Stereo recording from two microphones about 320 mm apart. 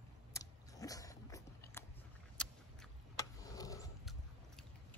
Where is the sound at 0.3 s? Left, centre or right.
Centre.